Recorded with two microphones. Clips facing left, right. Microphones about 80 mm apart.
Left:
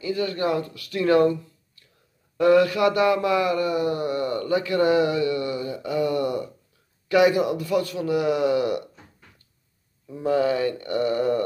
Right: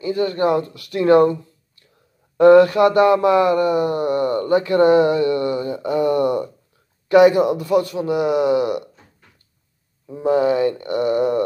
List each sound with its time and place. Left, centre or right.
0.0 s speech: right
2.3 s a sound: right
7.1 s a man's voice: right
10.0 s a man's voice: right